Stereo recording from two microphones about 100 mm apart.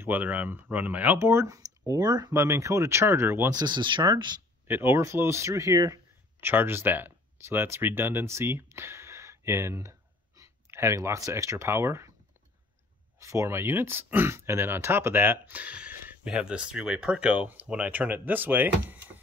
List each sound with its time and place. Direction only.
0.0 s speech: 15° right (ahead or behind); by 2.3 s 40° right (ahead or behind)
2.3 s speech: 30° right (ahead or behind)
3.4 s speech: 45° right (ahead or behind)
4.6 s speech: 20° right (ahead or behind)
6.4 s speech: 20° right (ahead or behind)
13.2 s speech: 30° right (ahead or behind)